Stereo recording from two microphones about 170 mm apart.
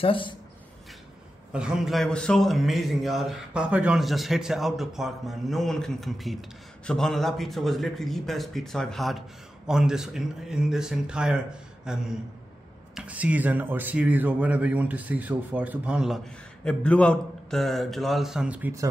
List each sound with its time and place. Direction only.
0.0 s speech: 30° left (ahead or behind)
1.5 s a man's voice: 5° right (ahead or behind)
16.6 s a man's voice: 5° left (ahead or behind); by 18.9 s 15° right (ahead or behind)